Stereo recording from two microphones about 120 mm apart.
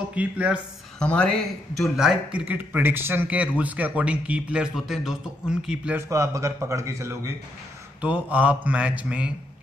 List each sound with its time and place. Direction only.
0.1 s speech: 10° right (ahead or behind)
0.9 s speech: 10° left (ahead or behind)
2.0 s speech: 5° right (ahead or behind)
5.9 s a man's voice: 25° right (ahead or behind)
8.0 s speech: 10° right (ahead or behind)